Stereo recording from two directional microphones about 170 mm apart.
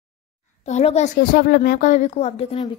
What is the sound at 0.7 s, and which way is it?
A woman's voice, 40° left (ahead or behind).